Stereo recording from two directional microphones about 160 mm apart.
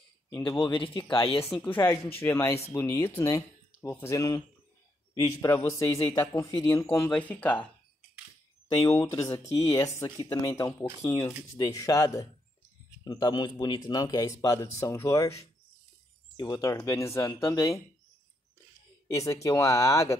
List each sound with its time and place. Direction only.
0.5 s speech: 30° left (ahead or behind)
1.5 s speech: 10° left (ahead or behind)
8.8 s speech: 15° left (ahead or behind)
16.3 s speech: 25° left (ahead or behind)
19.0 s speech: 20° left (ahead or behind)